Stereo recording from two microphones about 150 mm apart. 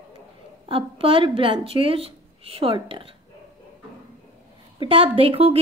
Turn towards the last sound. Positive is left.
turn(degrees=-40)  # may be behind; listen again after turning